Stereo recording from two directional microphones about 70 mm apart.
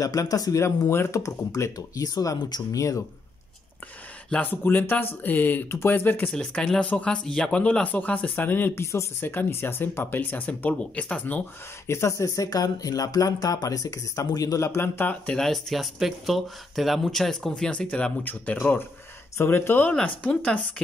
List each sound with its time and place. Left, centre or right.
0.0 s speech: left
0.6 s speech: left
2.7 s speech: left
4.3 s speech: left
6.3 s speech: centre
11.9 s speech: left
12.4 s speech: left
15.0 s speech: left
15.3 s speech: centre; by 19.9 s left
19.9 s speech: centre